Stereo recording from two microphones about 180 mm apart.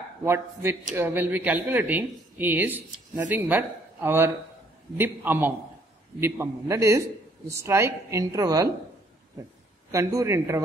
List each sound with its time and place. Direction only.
0.2 s speech: 15° right (ahead or behind)
9.8 s speech: 15° right (ahead or behind)